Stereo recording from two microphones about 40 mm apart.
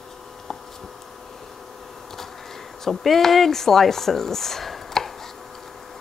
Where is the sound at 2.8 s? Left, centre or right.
Centre.